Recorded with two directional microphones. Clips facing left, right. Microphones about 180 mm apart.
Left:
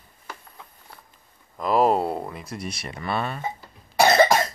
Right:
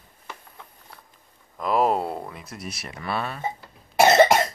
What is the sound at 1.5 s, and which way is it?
Speech, centre (ahead or behind).